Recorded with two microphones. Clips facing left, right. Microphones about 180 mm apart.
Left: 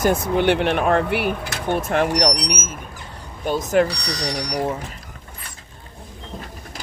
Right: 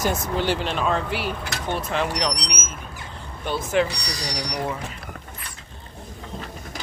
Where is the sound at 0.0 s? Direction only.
55° left (ahead or behind).